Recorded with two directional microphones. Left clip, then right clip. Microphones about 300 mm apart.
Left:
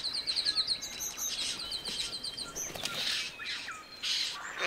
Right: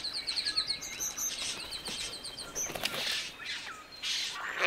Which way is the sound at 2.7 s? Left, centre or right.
Right.